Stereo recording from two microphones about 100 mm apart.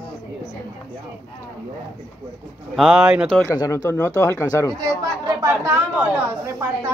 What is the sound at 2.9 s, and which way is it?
Speech, 20° right (ahead or behind).